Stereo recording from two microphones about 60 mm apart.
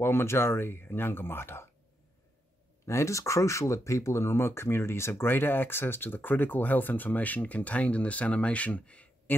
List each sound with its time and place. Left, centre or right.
0.0 s speech: left
2.9 s speech: left